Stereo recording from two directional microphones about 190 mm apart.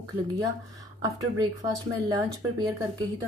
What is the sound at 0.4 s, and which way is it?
Speech, 20° right (ahead or behind).